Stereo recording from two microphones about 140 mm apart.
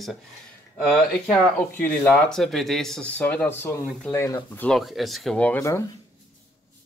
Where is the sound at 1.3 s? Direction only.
10° left (ahead or behind).